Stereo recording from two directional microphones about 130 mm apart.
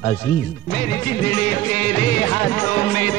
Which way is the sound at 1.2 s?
10° left (ahead or behind).